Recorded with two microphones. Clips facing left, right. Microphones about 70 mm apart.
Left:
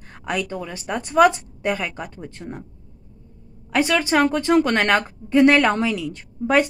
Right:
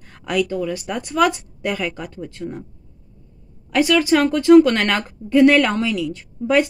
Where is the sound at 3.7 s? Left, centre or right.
Left.